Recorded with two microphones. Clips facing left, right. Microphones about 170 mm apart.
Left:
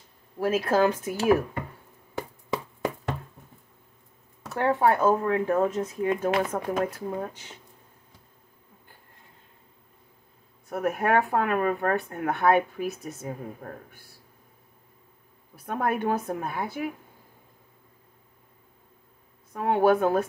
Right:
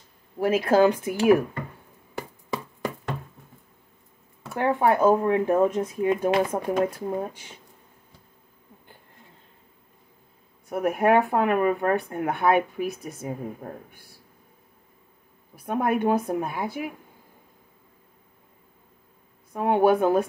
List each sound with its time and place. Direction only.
0.4 s speech: 15° right (ahead or behind)
2.1 s a sound: centre (ahead or behind)
4.5 s speech: 15° right (ahead or behind)
10.7 s speech: 15° right (ahead or behind)
15.5 s speech: 10° right (ahead or behind)
19.5 s speech: 20° right (ahead or behind)